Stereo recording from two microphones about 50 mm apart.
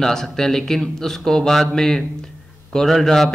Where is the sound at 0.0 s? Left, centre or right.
Centre.